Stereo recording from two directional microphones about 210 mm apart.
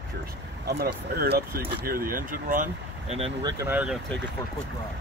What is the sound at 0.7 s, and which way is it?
Speech, 50° right (ahead or behind).